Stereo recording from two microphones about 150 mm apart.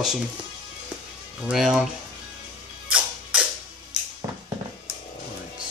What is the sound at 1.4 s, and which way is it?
Speech, 5° right (ahead or behind).